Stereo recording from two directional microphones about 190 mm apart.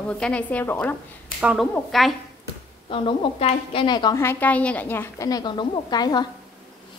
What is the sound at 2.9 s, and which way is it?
A woman's voice, 25° left (ahead or behind).